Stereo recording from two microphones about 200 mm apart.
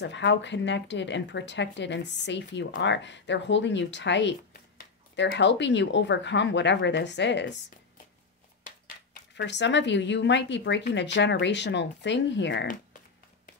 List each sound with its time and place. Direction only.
0.0 s speech: 60° left (ahead or behind)
9.3 s speech: 60° left (ahead or behind)